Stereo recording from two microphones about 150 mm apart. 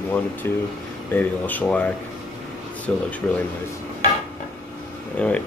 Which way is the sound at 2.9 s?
5° left (ahead or behind).